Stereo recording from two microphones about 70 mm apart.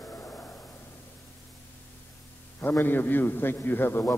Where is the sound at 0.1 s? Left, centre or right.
Left.